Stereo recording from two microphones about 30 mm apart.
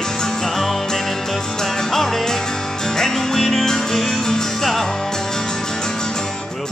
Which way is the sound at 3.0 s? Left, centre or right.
Centre.